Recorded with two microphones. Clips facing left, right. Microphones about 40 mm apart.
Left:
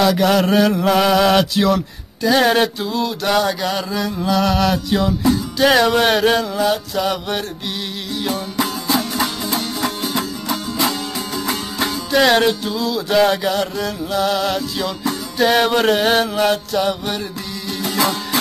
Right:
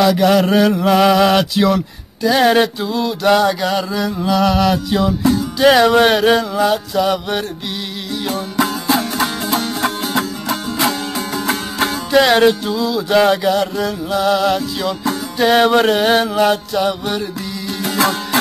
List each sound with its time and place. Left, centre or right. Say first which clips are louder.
0.0 s music: right 2 dB; centre
9.8 s music: right 3 dB; right
10.1 s music: right 3 dB; centre
11.4 s music: right 3 dB; right
12.2 s music: right 3 dB; centre
15.0 s music: right 2 dB; centre
17.9 s music: right 3 dB; right